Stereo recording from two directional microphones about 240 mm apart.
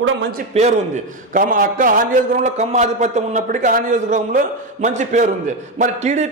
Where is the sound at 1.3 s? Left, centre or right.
Right.